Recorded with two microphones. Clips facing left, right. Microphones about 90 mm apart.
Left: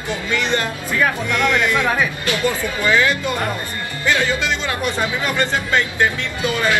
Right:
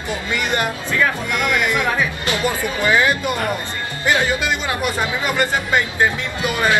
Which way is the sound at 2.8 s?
20° right (ahead or behind).